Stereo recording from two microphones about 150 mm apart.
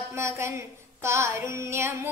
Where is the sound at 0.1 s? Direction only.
20° right (ahead or behind).